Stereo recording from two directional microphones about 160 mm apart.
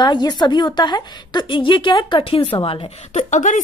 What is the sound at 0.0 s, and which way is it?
A woman's voice, 25° left (ahead or behind).